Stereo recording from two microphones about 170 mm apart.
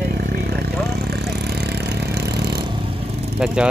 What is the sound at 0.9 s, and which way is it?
Vehicle, 70° right (ahead or behind).